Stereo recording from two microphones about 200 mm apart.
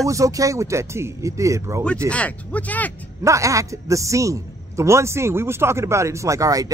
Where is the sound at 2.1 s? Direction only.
5° left (ahead or behind).